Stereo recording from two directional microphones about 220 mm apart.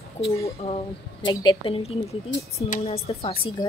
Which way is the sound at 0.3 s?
30° left (ahead or behind).